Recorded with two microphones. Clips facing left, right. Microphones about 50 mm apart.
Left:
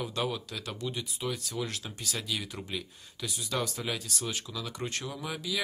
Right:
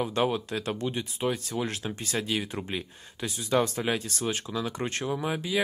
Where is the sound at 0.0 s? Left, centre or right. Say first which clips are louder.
Right 6 dB; right.